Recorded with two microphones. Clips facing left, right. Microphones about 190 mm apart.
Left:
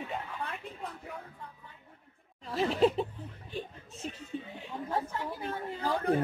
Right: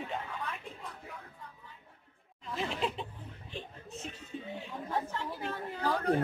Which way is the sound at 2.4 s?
35° left (ahead or behind).